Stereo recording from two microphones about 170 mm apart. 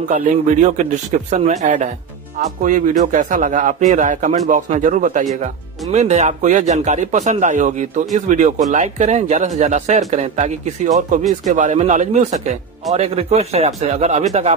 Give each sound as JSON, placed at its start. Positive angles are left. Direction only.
{"t": 0.5, "sound": "speech", "side_deg": -45}